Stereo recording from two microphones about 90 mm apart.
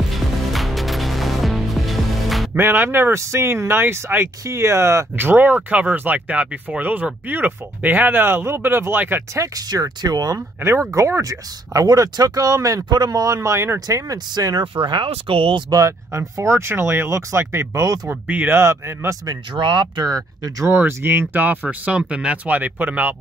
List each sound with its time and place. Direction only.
0.1 s music: centre (ahead or behind)
2.5 s speech: 25° right (ahead or behind)
9.3 s speech: 40° right (ahead or behind)
10.6 s speech: 30° right (ahead or behind); by 14.6 s 50° right (ahead or behind)
14.9 s speech: 70° right (ahead or behind)
15.7 s speech: 35° right (ahead or behind)
18.0 s speech: 20° right (ahead or behind)
19.5 s speech: 60° right (ahead or behind); by 20.7 s 40° right (ahead or behind)
20.7 s speech: 25° right (ahead or behind)